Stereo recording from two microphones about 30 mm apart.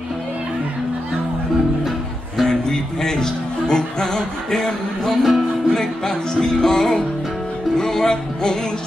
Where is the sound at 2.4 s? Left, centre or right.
Centre.